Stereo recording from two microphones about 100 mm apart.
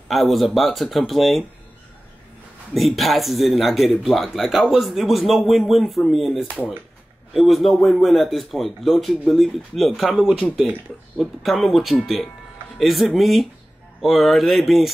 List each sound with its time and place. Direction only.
0.1 s speech: centre (ahead or behind)
2.7 s speech: centre (ahead or behind)